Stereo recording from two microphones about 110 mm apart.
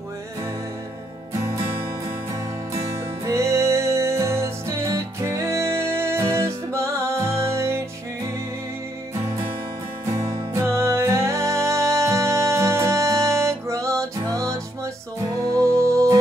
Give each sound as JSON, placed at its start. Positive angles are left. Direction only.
{"t": 1.4, "sound": "music", "side_deg": -30}
{"t": 2.7, "sound": "music", "side_deg": -30}
{"t": 10.1, "sound": "music", "side_deg": -30}